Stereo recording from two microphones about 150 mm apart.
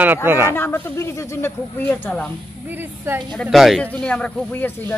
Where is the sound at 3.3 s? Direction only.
Centre (ahead or behind).